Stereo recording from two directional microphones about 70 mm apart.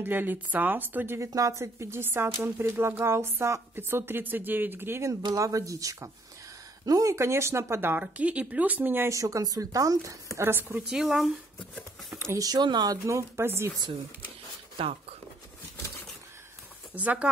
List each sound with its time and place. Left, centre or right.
0.0 s a woman's voice: right
1.2 s speech: right
5.3 s speech: right
8.0 s a woman's voice: centre
9.1 s speech: right
10.3 s speech: right
10.9 s speech: centre
12.4 s speech: right
16.9 s a woman's voice: right